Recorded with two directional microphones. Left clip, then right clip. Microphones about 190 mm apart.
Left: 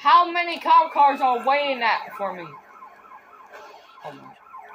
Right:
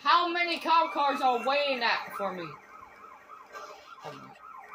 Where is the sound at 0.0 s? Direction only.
25° right (ahead or behind).